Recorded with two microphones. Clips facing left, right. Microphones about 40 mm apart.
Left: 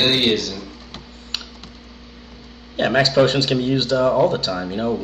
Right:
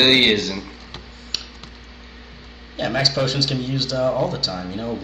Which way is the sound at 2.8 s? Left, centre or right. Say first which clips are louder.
Left 6 dB; left.